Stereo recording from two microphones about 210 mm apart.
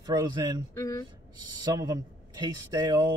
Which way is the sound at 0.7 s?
15° left (ahead or behind).